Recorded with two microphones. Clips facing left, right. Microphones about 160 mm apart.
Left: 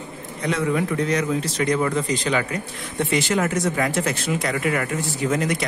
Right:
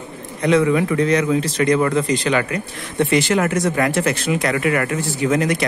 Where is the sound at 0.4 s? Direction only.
90° right.